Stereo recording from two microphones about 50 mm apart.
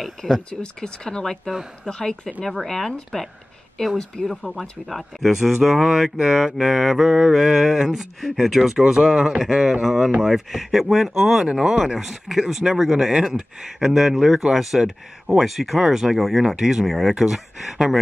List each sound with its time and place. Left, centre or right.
0.0 s speech: centre
0.5 s speech: centre
4.3 s speech: centre
6.1 s mantra: centre
10.2 s speech: centre
11.4 s mantra: centre
11.8 s speech: centre
13.6 s mantra: centre
15.3 s speech: centre
16.5 s mantra: centre
16.8 s speech: centre
17.1 s speech: centre